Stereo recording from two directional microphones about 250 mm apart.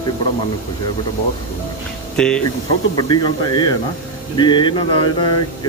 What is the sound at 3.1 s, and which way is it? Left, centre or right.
Speech, centre.